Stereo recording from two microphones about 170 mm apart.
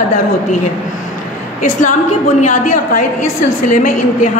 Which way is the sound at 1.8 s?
45° left (ahead or behind).